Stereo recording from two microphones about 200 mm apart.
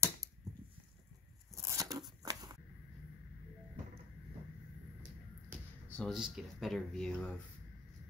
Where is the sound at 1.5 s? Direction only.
15° right (ahead or behind).